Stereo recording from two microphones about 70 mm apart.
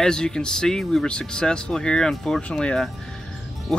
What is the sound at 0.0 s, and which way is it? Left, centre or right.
Speech, centre.